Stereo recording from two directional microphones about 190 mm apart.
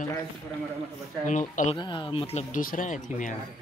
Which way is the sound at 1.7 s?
25° left (ahead or behind).